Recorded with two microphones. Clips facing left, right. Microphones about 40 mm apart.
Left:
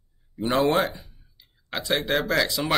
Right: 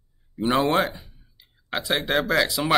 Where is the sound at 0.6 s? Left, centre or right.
Centre.